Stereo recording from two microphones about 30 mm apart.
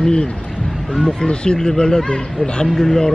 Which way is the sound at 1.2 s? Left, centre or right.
Left.